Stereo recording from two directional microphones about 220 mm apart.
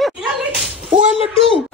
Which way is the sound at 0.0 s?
Centre (ahead or behind).